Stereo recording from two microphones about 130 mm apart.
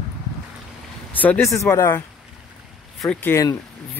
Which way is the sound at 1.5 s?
20° left (ahead or behind).